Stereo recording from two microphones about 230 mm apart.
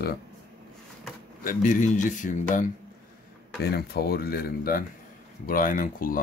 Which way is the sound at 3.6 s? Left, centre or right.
Left.